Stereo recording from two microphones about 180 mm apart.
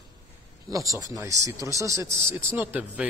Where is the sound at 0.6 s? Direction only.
20° right (ahead or behind).